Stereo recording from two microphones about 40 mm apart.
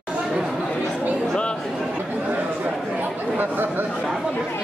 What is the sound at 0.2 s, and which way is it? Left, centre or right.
Chatter, centre.